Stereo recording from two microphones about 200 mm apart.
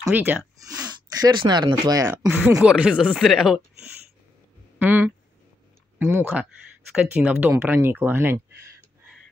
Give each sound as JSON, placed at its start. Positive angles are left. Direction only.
{"t": 0.0, "sound": "speech", "side_deg": -10}
{"t": 0.7, "sound": "speech", "side_deg": -20}
{"t": 2.2, "sound": "speech", "side_deg": -5}
{"t": 4.7, "sound": "speech", "side_deg": -10}